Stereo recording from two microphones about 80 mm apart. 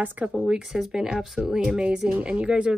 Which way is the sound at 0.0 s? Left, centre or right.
Right.